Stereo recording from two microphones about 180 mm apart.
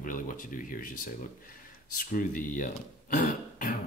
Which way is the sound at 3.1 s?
45° left (ahead or behind).